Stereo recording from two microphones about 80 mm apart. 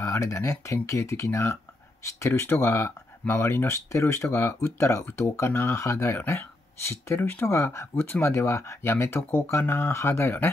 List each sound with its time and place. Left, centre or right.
0.0 s speech: left
5.8 s speech: left